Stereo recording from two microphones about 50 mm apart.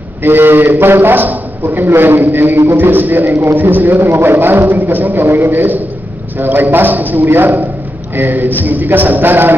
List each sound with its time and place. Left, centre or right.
0.2 s a man's voice: right
7.2 s a man's voice: right